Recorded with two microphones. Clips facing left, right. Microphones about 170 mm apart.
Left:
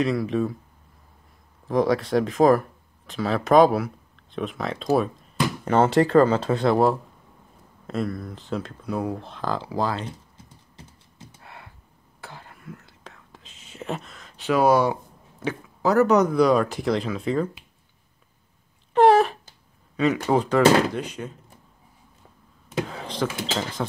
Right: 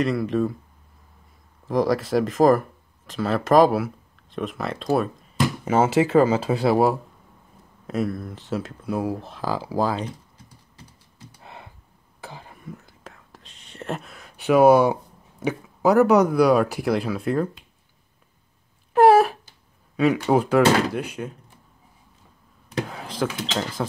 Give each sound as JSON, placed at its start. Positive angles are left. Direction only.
{"t": 0.0, "sound": "speech", "side_deg": 0}
{"t": 1.7, "sound": "speech", "side_deg": 0}
{"t": 11.4, "sound": "a sound", "side_deg": -20}
{"t": 12.2, "sound": "whispering", "side_deg": -15}
{"t": 15.4, "sound": "speech", "side_deg": -15}
{"t": 18.9, "sound": "a sound", "side_deg": -5}
{"t": 20.2, "sound": "speech", "side_deg": -10}
{"t": 22.8, "sound": "speech", "side_deg": -5}